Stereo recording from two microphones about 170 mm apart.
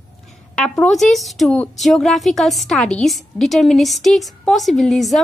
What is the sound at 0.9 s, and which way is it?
A woman's voice, centre (ahead or behind).